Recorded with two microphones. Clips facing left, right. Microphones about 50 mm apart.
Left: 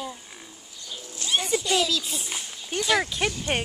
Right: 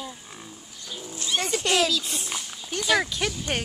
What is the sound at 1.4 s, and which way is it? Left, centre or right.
Speech, right.